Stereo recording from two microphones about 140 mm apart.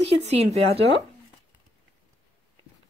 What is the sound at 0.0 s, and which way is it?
Speech, 50° right (ahead or behind).